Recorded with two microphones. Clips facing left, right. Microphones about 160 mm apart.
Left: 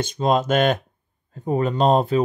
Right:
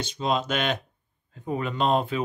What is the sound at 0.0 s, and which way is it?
Speech, 50° left (ahead or behind).